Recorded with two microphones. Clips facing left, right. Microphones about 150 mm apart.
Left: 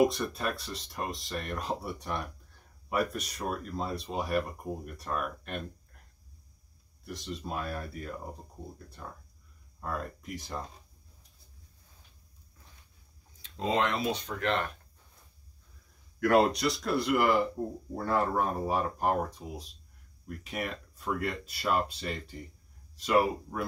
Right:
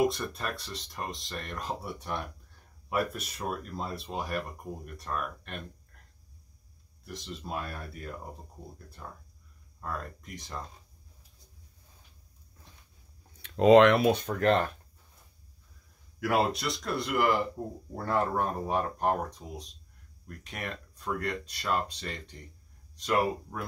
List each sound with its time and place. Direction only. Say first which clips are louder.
0.0 s speech: left 2 dB; centre (ahead or behind)
7.1 s speech: left 1 dB; centre (ahead or behind)
13.4 s speech: right 11 dB; 75° right (ahead or behind); by 14.7 s 40° right (ahead or behind)
16.2 s speech: left 4 dB; 5° right (ahead or behind)